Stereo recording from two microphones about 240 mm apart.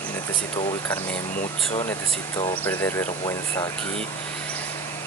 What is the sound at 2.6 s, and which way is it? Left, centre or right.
Speech, centre.